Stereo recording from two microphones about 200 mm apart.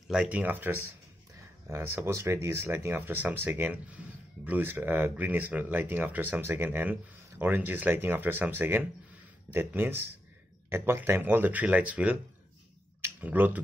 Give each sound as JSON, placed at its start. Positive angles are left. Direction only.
{"t": 0.1, "sound": "speech", "side_deg": -5}